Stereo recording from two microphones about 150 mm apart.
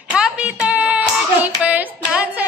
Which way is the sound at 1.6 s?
10° right (ahead or behind).